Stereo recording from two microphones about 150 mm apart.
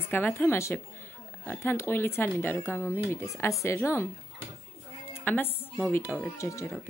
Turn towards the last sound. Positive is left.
turn(degrees=20)  # may be behind; listen again after turning